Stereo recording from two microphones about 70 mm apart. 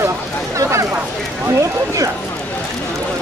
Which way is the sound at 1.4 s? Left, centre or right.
Right.